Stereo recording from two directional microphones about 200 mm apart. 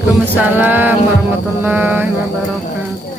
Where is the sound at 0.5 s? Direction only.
10° right (ahead or behind).